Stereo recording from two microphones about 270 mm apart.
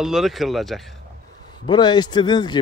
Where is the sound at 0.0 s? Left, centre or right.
Centre.